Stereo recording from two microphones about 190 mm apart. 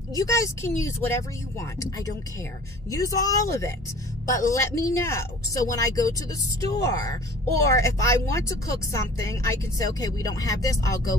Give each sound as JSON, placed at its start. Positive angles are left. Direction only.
{"t": 0.1, "sound": "speech", "side_deg": 15}